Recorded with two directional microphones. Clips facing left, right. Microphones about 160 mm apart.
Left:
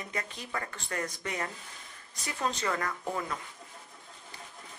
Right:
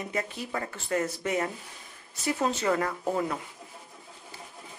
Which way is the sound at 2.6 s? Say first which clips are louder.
Right 6 dB; 30° right (ahead or behind).